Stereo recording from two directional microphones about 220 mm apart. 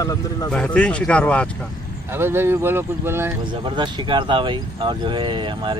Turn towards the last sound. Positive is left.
turn(degrees=-20)  # may be behind; listen again after turning